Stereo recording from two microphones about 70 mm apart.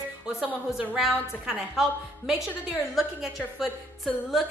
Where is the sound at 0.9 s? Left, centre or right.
Centre.